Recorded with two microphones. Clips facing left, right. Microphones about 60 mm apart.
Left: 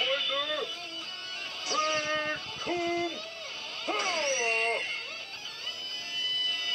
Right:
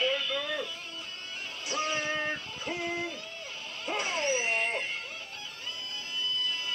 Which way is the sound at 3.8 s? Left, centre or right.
Right.